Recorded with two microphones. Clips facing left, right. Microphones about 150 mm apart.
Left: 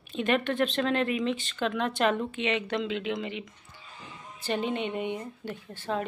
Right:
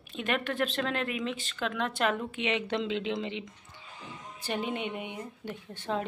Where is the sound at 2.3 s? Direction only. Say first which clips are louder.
Left 1 dB; 15° right (ahead or behind).